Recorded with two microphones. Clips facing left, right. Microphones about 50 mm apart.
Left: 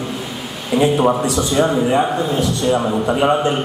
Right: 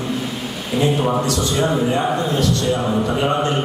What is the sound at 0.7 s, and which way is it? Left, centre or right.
A man's voice, centre.